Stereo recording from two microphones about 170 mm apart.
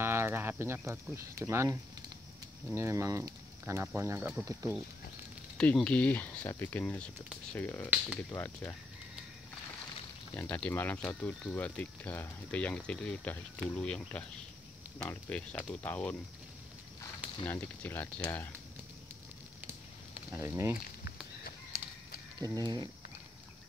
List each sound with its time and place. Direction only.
0.0 s speech: 15° right (ahead or behind)
5.6 s speech: 5° left (ahead or behind)
10.3 s speech: 10° left (ahead or behind)
17.5 s speech: 10° left (ahead or behind)
20.3 s speech: 15° right (ahead or behind)
22.4 s speech: 25° right (ahead or behind)